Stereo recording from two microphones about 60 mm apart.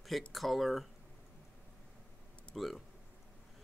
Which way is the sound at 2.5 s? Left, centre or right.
Centre.